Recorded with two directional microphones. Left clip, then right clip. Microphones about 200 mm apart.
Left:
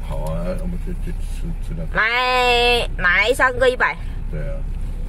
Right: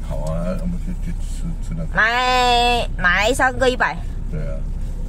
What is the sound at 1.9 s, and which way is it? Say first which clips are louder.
A woman's voice: right 1 dB; 5° left (ahead or behind).